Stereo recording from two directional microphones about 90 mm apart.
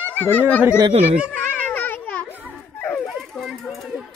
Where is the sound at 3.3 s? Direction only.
Centre (ahead or behind).